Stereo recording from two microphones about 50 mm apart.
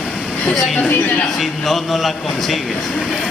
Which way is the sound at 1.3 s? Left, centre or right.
Centre.